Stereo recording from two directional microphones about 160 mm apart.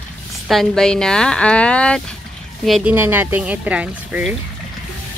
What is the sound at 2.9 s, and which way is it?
A woman's voice, 10° right (ahead or behind).